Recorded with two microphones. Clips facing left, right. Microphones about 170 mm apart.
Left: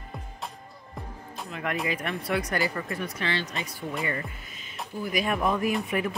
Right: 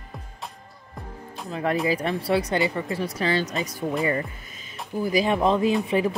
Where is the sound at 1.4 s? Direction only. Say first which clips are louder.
Right 7 dB; 30° right (ahead or behind).